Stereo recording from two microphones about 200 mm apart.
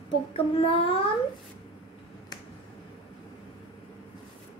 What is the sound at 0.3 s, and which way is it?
Speech, 30° left (ahead or behind).